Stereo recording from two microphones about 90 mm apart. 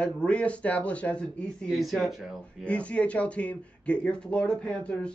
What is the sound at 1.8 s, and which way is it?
Speech, centre (ahead or behind).